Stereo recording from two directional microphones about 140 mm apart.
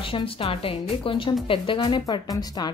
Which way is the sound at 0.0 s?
40° left (ahead or behind).